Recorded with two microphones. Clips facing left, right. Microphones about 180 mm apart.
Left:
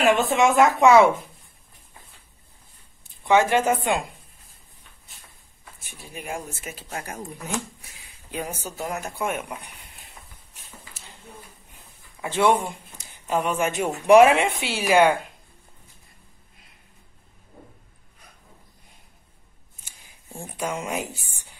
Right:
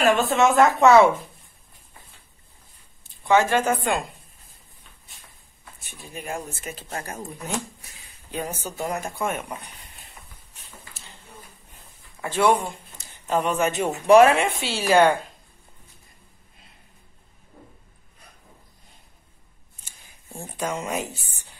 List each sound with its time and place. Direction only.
0.0 s speech: 15° left (ahead or behind)
3.3 s a woman's voice: 20° left (ahead or behind)
5.9 s speech: 10° left (ahead or behind)
11.7 s speech: 20° left (ahead or behind)
19.8 s speech: 10° left (ahead or behind)